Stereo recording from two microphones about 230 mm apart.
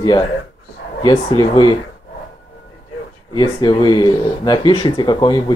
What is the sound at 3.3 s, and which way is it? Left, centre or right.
Speech, centre.